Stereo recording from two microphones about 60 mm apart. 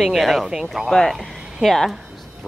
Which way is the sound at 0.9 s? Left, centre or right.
Centre.